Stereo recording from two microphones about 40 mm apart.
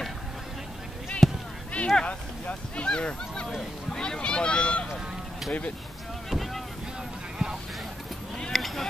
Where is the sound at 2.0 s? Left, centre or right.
Left.